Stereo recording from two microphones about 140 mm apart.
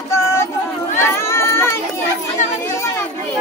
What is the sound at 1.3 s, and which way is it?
Child singing, 20° left (ahead or behind).